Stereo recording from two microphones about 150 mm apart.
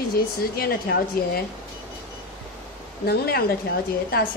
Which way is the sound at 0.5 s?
90° left.